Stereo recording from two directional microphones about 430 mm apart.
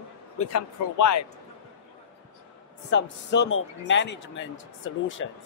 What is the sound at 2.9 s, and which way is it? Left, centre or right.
Speech, left.